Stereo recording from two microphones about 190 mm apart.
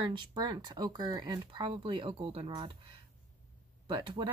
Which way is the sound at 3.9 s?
25° right (ahead or behind).